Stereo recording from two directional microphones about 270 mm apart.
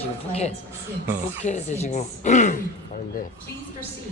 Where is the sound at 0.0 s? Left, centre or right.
Left.